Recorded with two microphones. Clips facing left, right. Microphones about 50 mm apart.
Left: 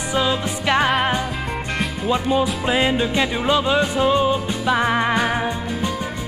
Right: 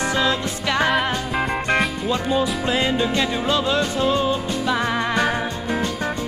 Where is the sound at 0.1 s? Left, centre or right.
Centre.